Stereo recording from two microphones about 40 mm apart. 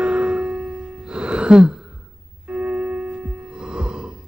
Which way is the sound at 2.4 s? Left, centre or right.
Right.